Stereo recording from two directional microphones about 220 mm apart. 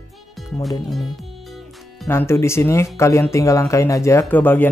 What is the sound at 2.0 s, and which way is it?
Speech, 10° left (ahead or behind).